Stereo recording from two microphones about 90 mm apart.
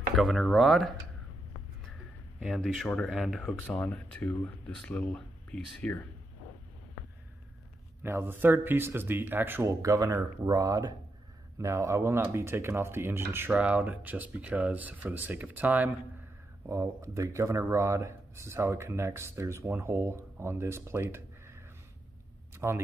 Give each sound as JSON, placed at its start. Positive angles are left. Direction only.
{"t": 0.1, "sound": "speech", "side_deg": 0}
{"t": 2.4, "sound": "speech", "side_deg": 5}
{"t": 3.4, "sound": "speech", "side_deg": 15}
{"t": 8.0, "sound": "speech", "side_deg": -25}
{"t": 9.7, "sound": "speech", "side_deg": -40}
{"t": 16.6, "sound": "speech", "side_deg": -30}
{"t": 22.5, "sound": "a sound", "side_deg": -30}